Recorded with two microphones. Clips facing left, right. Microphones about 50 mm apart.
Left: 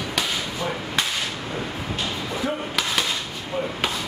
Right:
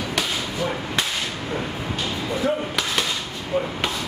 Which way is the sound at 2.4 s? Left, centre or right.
Centre.